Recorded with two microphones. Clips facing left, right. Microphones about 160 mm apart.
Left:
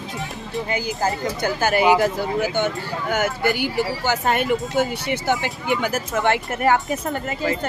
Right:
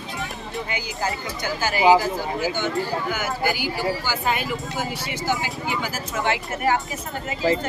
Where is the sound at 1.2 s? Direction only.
60° left (ahead or behind).